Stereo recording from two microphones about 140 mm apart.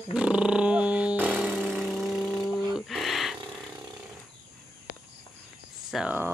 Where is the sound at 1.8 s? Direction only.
Centre (ahead or behind).